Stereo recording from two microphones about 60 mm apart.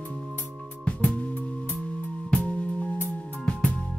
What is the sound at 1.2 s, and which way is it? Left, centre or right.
Music, left.